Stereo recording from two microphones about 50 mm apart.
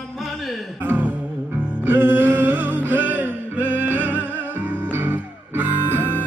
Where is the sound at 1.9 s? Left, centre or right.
Right.